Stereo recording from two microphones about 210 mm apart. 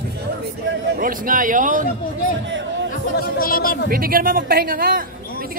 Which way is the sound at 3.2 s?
45° left (ahead or behind).